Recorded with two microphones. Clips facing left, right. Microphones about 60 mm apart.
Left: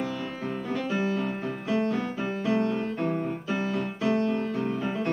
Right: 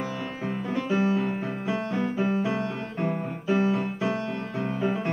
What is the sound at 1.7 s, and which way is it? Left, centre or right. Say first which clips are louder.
Music: left 2 dB; centre.